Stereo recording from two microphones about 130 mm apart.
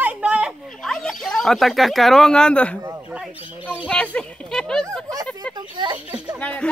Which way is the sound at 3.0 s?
10° right (ahead or behind).